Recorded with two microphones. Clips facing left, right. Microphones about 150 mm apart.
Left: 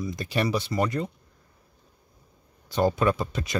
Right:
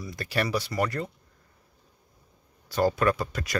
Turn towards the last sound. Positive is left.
turn(degrees=20)  # may be behind; listen again after turning